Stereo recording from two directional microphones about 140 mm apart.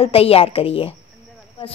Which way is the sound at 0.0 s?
45° left (ahead or behind).